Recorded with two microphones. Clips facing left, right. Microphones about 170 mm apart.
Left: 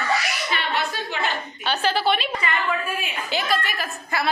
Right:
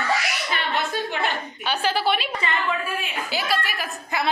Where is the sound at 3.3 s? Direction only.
10° right (ahead or behind).